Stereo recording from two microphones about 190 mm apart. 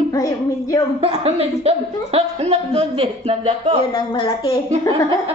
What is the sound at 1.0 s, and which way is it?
Speech, 30° right (ahead or behind).